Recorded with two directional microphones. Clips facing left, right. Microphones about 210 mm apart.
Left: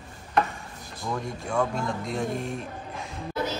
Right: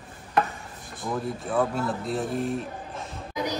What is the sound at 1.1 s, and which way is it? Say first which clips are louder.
Speech: right 2 dB; 5° right (ahead or behind).